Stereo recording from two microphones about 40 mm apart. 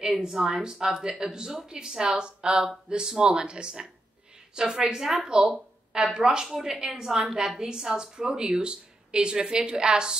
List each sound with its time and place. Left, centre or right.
0.3 s a woman's voice: centre